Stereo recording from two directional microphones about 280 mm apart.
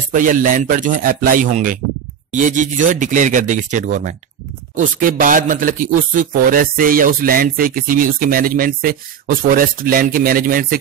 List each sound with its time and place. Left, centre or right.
0.1 s speech: right